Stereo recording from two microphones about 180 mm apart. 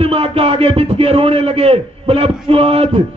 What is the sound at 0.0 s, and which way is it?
A man's voice, 35° right (ahead or behind).